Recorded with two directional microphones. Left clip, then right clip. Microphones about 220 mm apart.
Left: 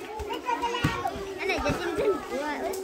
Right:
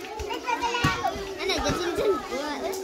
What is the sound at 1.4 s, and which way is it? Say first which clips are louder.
Chatter: right 1 dB; 55° right (ahead or behind).